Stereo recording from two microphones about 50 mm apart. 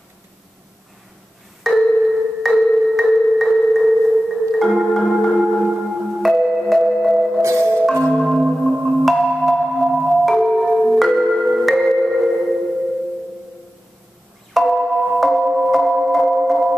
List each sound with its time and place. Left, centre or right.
1.6 s marimba: centre
5.8 s music: centre
7.4 s marimba: right
8.1 s marimba: centre
9.3 s music: centre
10.4 s marimba: centre
11.4 s music: centre
14.5 s singing bowl: centre